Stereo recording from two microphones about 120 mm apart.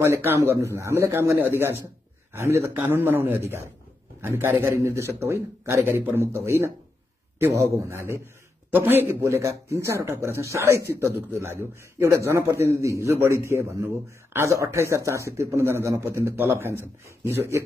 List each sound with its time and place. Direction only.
0.0 s a man's voice: 20° right (ahead or behind)